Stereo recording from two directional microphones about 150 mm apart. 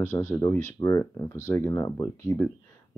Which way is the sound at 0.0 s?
15° left (ahead or behind).